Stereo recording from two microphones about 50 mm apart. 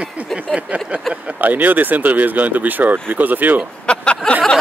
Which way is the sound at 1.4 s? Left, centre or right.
Right.